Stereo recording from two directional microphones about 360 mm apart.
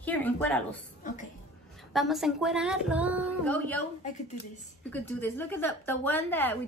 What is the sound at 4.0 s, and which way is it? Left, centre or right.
Speech, centre.